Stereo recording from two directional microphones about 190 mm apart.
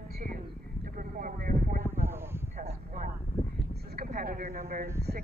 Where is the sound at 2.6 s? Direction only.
45° right (ahead or behind).